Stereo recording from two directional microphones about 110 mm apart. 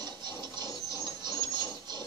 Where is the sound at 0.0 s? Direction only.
40° right (ahead or behind).